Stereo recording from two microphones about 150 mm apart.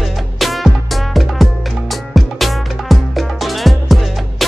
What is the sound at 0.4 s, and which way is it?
Music, centre (ahead or behind).